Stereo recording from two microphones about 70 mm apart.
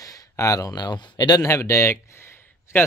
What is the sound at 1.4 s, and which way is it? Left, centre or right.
Speech, left.